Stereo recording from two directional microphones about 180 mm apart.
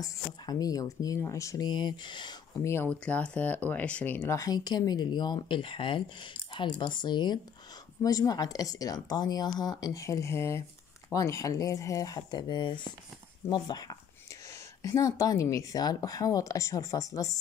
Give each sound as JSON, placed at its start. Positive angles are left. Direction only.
{"t": 0.0, "sound": "speech", "side_deg": 20}
{"t": 2.7, "sound": "speech", "side_deg": 10}